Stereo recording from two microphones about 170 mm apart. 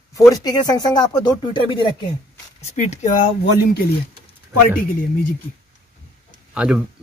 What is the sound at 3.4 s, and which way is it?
Speech, 70° left (ahead or behind).